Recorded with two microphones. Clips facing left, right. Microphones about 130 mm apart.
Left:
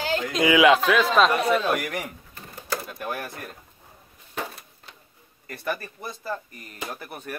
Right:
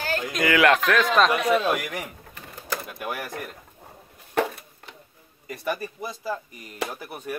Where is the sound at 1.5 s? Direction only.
Centre (ahead or behind).